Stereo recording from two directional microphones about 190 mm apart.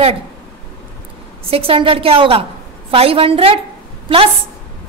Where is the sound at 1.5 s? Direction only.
30° right (ahead or behind).